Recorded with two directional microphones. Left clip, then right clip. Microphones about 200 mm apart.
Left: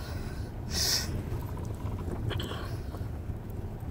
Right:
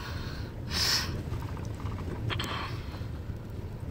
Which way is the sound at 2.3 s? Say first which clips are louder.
Right 5 dB; 20° right (ahead or behind).